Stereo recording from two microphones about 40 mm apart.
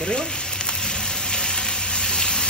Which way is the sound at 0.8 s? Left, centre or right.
Centre.